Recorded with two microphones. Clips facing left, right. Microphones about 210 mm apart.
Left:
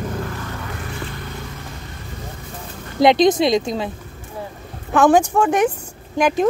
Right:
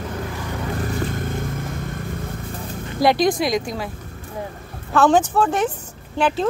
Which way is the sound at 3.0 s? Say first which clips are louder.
Left 4 dB; 20° left (ahead or behind).